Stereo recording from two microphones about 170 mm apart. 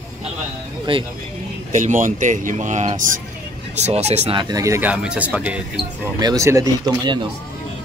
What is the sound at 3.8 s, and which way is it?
Speech, 40° right (ahead or behind).